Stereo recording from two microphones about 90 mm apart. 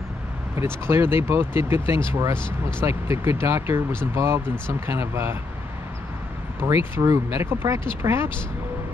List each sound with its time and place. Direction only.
0.6 s speech: 30° right (ahead or behind)
6.6 s speech: 20° right (ahead or behind)
7.0 s speech: 35° right (ahead or behind)